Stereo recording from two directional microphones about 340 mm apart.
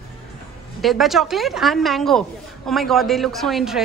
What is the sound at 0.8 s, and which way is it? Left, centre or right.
Speech, centre.